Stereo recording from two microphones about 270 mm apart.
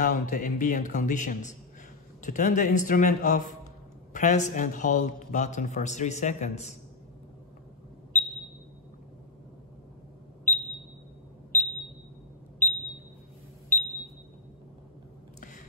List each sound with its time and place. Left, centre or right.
0.0 s a man's voice: left
10.5 s smoke detector: centre
12.6 s smoke detector: centre